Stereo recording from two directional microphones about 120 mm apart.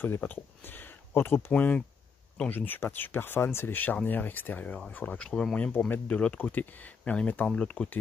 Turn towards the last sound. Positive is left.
turn(degrees=10)  # may be behind; listen again after turning